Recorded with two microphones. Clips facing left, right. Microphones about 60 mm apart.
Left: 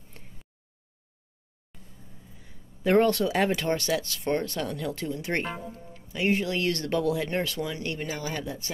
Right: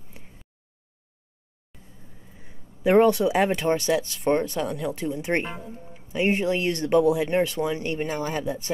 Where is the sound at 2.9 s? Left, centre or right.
Centre.